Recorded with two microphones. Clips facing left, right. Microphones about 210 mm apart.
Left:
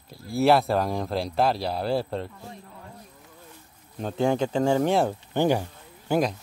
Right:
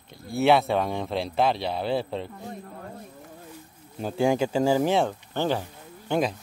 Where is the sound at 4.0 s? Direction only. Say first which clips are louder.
Right 1 dB; 5° right (ahead or behind).